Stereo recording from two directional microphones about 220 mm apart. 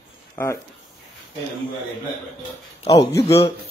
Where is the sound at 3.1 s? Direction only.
15° left (ahead or behind).